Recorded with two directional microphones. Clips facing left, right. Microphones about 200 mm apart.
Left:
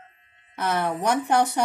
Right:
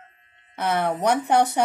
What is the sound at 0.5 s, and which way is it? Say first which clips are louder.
Speech: right 2 dB; 60° right (ahead or behind).